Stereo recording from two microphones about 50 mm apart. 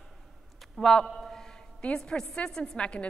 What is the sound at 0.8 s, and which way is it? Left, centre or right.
Speech, centre.